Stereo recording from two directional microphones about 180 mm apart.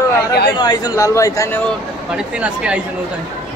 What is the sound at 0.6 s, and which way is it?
Speech, 20° left (ahead or behind).